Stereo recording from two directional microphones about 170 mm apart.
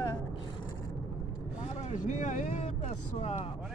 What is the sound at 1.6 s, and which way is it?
Speech, 45° left (ahead or behind).